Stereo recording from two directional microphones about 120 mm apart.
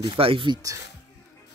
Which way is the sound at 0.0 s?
45° right (ahead or behind).